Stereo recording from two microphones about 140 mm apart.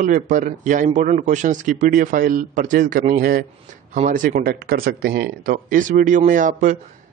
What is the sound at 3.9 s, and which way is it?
Speech, 70° right (ahead or behind).